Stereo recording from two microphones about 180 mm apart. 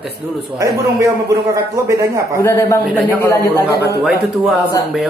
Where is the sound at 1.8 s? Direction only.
15° right (ahead or behind).